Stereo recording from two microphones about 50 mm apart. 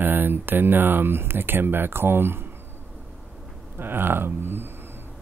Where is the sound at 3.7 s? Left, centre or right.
Right.